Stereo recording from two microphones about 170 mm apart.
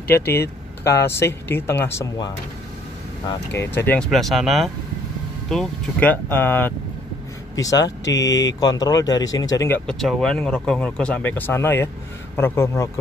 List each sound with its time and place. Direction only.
0.3 s speech: 15° left (ahead or behind)
9.8 s speech: centre (ahead or behind)